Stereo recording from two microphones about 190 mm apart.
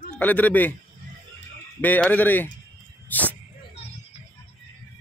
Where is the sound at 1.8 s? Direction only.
10° left (ahead or behind).